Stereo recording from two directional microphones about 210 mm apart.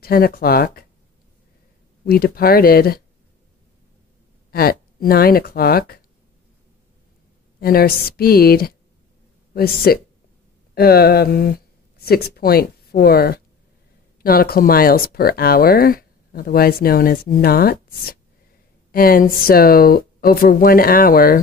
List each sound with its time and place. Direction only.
0.0 s speech: 45° left (ahead or behind)
2.0 s speech: 45° left (ahead or behind)
4.5 s speech: 45° left (ahead or behind)
7.6 s speech: 45° left (ahead or behind)